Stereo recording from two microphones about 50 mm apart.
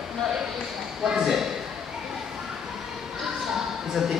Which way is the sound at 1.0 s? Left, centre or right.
Centre.